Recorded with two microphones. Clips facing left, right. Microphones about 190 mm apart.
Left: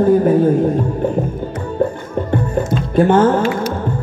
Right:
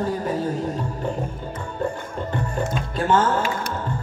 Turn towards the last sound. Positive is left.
turn(degrees=55)  # may be behind; listen again after turning